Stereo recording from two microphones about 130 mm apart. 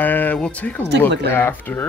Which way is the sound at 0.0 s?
15° left (ahead or behind).